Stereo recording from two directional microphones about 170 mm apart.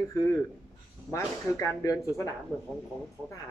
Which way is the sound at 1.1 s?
15° left (ahead or behind).